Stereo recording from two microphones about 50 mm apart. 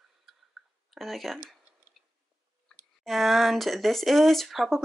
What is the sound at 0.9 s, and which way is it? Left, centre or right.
Speech, centre.